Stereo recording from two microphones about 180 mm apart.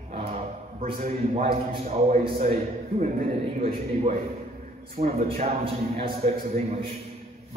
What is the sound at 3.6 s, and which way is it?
A man's voice, 35° right (ahead or behind).